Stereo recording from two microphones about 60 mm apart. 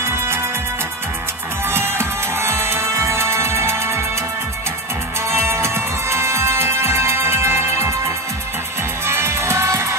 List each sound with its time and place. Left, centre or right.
0.0 s music: right
1.7 s music: right
5.3 s music: right
9.0 s music: right